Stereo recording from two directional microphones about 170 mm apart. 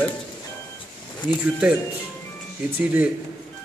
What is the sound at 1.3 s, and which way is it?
Speech, 5° right (ahead or behind).